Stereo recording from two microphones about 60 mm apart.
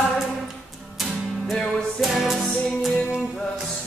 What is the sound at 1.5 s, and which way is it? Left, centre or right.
Music, centre.